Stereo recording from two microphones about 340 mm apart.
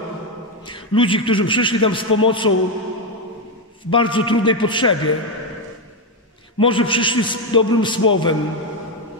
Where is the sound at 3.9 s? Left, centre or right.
Centre.